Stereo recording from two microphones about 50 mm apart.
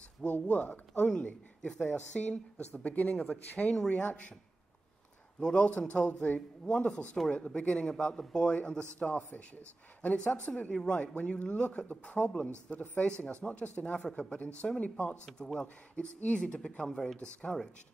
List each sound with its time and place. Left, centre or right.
0.2 s speech: left
5.4 s speech: left
10.1 s speech: left
15.3 s speech: centre
15.6 s speech: left